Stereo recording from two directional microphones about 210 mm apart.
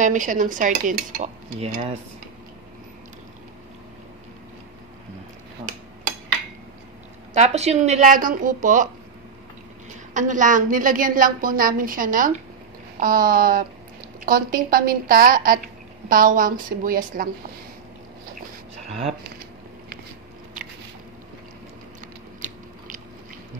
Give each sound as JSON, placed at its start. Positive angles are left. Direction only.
{"t": 0.0, "sound": "a woman's voice", "side_deg": -35}
{"t": 7.3, "sound": "a woman's voice", "side_deg": -30}
{"t": 10.1, "sound": "a woman's voice", "side_deg": -35}
{"t": 18.9, "sound": "speech", "side_deg": -30}